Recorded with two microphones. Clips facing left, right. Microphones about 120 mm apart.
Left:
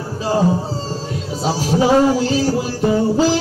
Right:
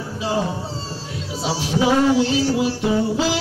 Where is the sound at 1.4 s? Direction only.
40° left (ahead or behind).